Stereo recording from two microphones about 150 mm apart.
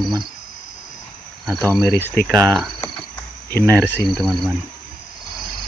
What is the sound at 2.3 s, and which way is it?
Speech, 25° right (ahead or behind).